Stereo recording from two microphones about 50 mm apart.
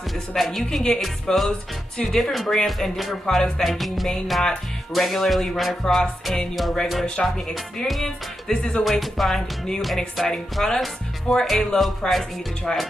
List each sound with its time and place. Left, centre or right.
0.4 s music: centre
2.3 s music: centre
7.2 s music: centre
7.7 s music: centre
10.5 s speech: centre
11.4 s music: centre